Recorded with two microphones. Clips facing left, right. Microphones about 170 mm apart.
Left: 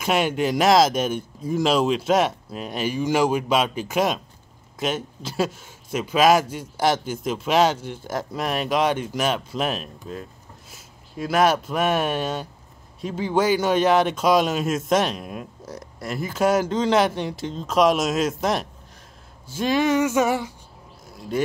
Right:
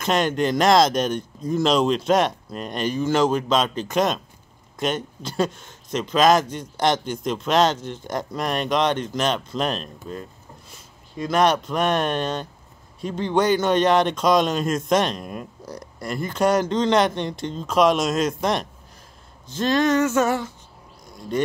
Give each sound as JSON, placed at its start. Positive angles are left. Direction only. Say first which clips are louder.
{"t": 0.0, "sound": "a man's voice", "louder": "right 1 dB", "side_deg": 10}
{"t": 21.1, "sound": "insect", "louder": "right 1 dB", "side_deg": 5}